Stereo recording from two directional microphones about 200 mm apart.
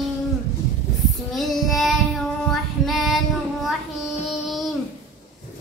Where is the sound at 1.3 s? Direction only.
Centre (ahead or behind).